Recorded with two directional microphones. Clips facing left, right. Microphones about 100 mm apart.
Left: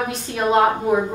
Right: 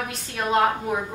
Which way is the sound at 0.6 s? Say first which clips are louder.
Left 6 dB; 20° left (ahead or behind).